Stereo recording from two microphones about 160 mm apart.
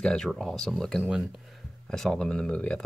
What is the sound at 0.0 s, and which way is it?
Speech, 5° left (ahead or behind).